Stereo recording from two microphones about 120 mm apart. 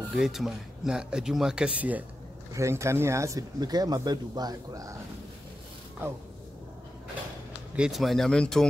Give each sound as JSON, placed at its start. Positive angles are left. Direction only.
{"t": 0.1, "sound": "speech", "side_deg": -5}
{"t": 2.5, "sound": "speech", "side_deg": -25}
{"t": 7.7, "sound": "speech", "side_deg": -5}